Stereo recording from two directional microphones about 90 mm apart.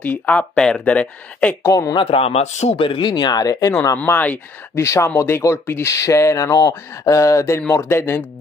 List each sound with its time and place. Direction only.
0.0 s speech: 15° left (ahead or behind)
1.6 s speech: 40° left (ahead or behind)
2.0 s speech: 90° left; by 3.7 s 45° left (ahead or behind)
3.9 s speech: 25° left (ahead or behind)
4.7 s speech: 30° left (ahead or behind)